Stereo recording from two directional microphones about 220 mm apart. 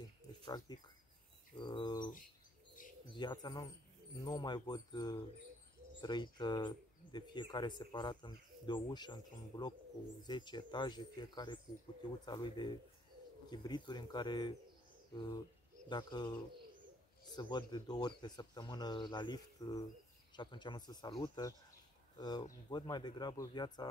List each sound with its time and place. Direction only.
0.5 s speech: 20° left (ahead or behind)
15.9 s speech: 20° left (ahead or behind)
17.4 s speech: 20° left (ahead or behind)